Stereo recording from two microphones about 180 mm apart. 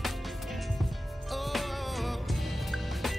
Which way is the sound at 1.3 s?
Centre (ahead or behind).